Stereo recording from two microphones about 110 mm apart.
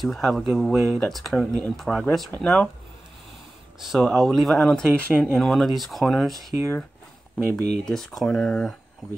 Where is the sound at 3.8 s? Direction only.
Centre (ahead or behind).